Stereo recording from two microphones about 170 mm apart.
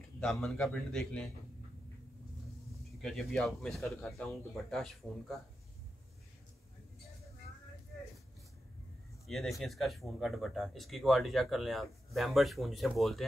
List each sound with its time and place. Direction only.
0.2 s speech: centre (ahead or behind)
3.0 s speech: centre (ahead or behind)
9.3 s speech: centre (ahead or behind)